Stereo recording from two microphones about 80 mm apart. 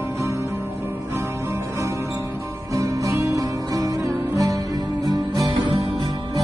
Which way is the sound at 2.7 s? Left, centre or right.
Right.